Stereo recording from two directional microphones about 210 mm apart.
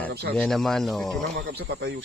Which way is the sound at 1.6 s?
65° right (ahead or behind).